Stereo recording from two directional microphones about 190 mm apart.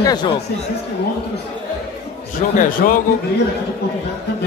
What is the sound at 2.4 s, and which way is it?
Speech, 45° left (ahead or behind).